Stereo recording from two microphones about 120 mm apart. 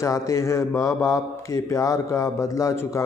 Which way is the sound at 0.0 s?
25° left (ahead or behind).